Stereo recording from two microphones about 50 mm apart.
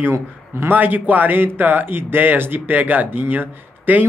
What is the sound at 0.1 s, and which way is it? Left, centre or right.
Speech, right.